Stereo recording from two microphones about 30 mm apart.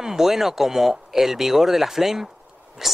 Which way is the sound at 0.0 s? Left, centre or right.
Centre.